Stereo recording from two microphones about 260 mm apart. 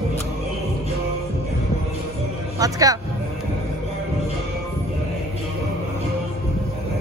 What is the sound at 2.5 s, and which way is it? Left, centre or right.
Speech, centre.